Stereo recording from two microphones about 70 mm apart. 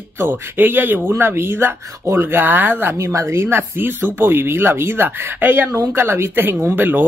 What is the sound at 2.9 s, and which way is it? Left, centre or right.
Speech, right.